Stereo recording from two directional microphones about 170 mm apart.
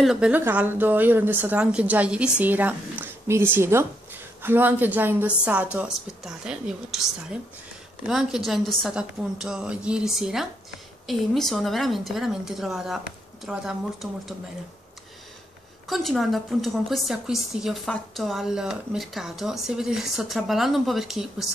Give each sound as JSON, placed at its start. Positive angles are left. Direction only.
{"t": 0.0, "sound": "a woman's voice", "side_deg": -5}
{"t": 15.9, "sound": "a woman's voice", "side_deg": 0}